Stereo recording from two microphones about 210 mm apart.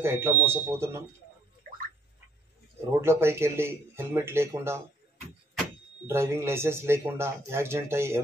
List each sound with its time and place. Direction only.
0.0 s speech: 10° right (ahead or behind)
1.6 s a sound: 40° right (ahead or behind)
3.0 s speech: 10° right (ahead or behind)
6.0 s speech: 10° right (ahead or behind)